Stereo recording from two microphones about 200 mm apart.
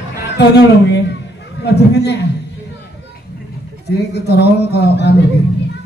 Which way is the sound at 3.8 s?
55° left (ahead or behind).